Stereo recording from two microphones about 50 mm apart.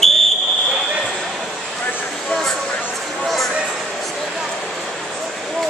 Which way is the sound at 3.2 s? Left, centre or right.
Centre.